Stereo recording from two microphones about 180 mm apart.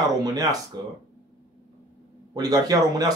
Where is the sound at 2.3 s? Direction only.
20° right (ahead or behind).